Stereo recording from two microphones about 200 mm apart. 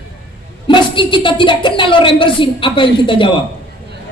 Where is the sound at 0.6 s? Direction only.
25° left (ahead or behind).